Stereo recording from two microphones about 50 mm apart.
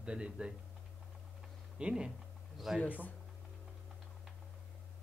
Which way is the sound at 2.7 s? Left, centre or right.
Centre.